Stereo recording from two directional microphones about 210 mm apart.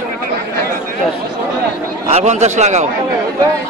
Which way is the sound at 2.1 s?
35° right (ahead or behind).